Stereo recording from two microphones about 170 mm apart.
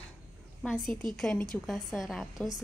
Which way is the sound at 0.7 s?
Centre (ahead or behind).